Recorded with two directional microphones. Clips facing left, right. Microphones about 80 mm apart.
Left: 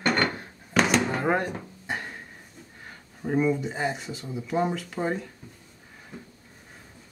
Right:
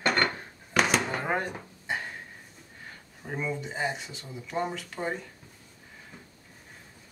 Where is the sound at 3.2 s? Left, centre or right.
Centre.